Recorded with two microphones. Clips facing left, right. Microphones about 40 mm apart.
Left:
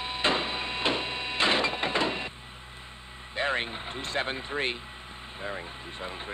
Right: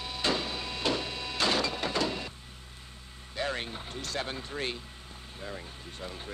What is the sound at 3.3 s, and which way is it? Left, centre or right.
Vehicle, left.